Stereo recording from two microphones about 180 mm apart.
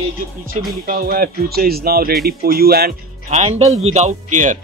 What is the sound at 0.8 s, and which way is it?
Speech, 55° right (ahead or behind).